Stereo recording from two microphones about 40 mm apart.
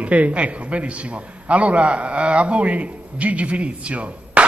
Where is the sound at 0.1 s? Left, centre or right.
Right.